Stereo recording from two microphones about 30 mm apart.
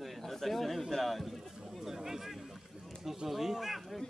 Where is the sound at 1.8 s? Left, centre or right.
Centre.